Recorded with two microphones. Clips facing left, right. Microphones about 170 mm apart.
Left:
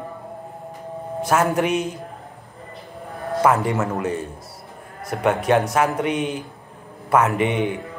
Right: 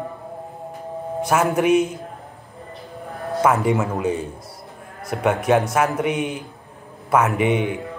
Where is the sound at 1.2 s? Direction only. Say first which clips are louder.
Even; 10° right (ahead or behind).